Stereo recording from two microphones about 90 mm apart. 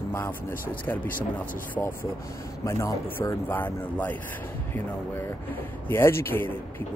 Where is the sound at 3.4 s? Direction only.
20° left (ahead or behind).